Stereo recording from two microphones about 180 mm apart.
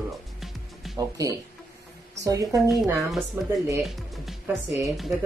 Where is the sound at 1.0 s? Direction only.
20° right (ahead or behind).